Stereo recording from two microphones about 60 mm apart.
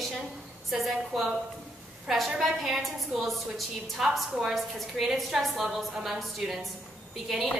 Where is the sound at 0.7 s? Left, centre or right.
Centre.